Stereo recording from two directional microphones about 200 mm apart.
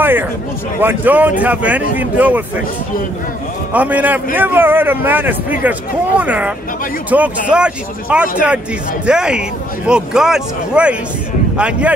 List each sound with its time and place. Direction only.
0.0 s a man's voice: 10° right (ahead or behind)
3.7 s a man's voice: 10° right (ahead or behind)